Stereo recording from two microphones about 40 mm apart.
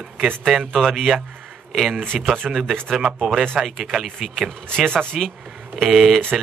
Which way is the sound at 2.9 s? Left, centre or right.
Centre.